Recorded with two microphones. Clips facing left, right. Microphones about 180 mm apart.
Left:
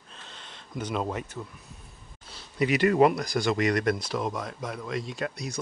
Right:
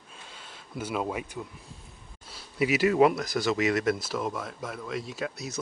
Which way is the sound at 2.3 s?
5° right (ahead or behind).